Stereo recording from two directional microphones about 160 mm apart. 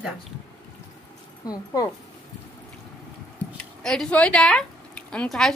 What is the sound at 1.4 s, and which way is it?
Speech, 20° left (ahead or behind).